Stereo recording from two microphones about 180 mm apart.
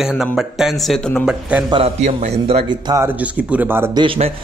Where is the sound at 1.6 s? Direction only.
30° right (ahead or behind).